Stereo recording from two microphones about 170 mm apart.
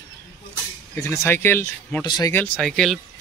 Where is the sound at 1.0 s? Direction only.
15° left (ahead or behind).